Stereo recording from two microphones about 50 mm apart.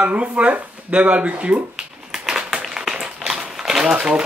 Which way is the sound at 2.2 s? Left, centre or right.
Centre.